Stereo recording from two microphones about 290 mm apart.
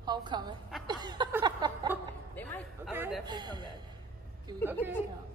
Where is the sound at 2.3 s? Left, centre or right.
Centre.